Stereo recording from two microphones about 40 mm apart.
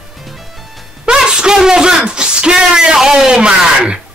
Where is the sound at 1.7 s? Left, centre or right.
Centre.